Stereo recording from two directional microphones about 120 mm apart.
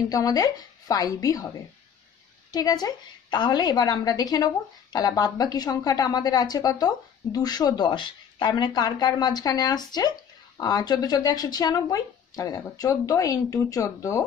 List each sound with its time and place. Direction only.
0.1 s a woman's voice: 30° left (ahead or behind)
2.5 s speech: 35° left (ahead or behind)